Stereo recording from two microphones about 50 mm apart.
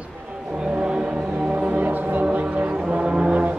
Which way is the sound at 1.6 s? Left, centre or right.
Right.